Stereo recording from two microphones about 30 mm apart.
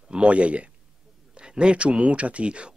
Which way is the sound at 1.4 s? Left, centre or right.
Right.